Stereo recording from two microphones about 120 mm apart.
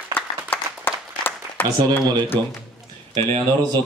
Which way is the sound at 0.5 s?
15° left (ahead or behind).